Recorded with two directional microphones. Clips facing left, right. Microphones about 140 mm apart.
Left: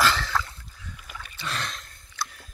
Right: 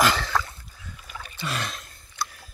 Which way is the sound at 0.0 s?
15° right (ahead or behind).